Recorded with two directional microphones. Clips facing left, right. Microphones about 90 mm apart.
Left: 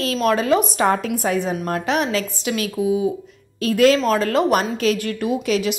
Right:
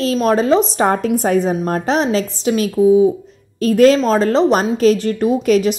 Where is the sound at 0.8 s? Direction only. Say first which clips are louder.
Right 4 dB; 40° right (ahead or behind).